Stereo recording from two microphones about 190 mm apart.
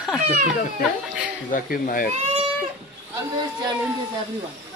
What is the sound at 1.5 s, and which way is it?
Speech, 45° left (ahead or behind).